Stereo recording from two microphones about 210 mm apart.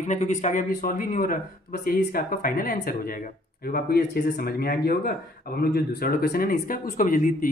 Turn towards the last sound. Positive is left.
turn(degrees=40)  # may be behind; listen again after turning